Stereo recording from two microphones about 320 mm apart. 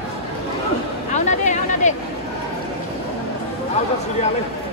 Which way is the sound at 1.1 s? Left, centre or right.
Left.